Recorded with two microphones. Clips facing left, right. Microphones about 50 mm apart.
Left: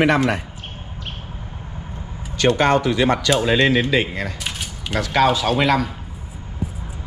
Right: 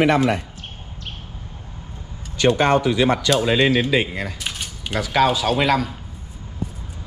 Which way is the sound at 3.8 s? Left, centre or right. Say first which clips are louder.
Left 1 dB; centre.